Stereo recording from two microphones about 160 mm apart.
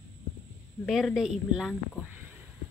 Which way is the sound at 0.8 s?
Centre (ahead or behind).